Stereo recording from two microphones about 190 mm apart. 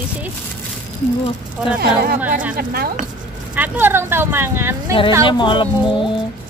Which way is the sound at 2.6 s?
55° right (ahead or behind).